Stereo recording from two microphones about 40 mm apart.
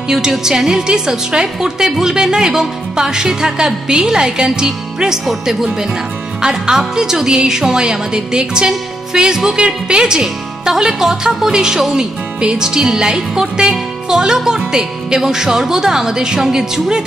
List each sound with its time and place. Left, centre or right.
0.1 s speech: centre
5.2 s speech: centre